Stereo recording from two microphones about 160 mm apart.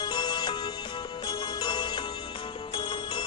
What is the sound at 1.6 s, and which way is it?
Music, 30° left (ahead or behind).